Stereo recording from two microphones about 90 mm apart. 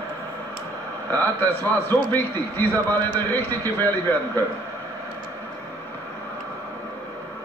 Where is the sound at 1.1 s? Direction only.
20° left (ahead or behind).